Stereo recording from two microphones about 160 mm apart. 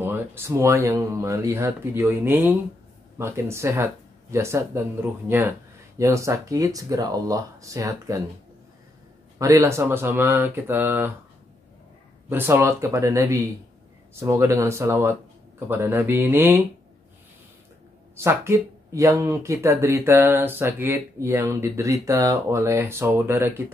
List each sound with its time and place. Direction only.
0.0 s speech: 15° right (ahead or behind)
5.9 s speech: 20° right (ahead or behind)
9.4 s speech: 20° right (ahead or behind)
12.3 s speech: 15° right (ahead or behind)
18.1 s speech: 15° right (ahead or behind)